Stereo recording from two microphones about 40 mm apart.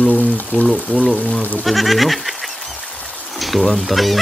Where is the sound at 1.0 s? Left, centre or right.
Centre.